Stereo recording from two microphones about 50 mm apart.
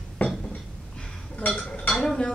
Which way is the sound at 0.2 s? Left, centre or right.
Left.